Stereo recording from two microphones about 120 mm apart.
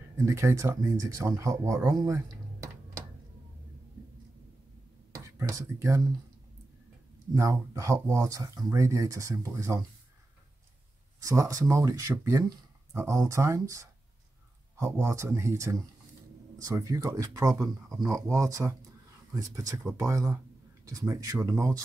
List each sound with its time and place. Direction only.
0.2 s speech: 25° right (ahead or behind)
2.2 s music: 30° right (ahead or behind)
5.1 s speech: 25° right (ahead or behind)
7.3 s speech: 25° right (ahead or behind)
11.1 s speech: 25° right (ahead or behind)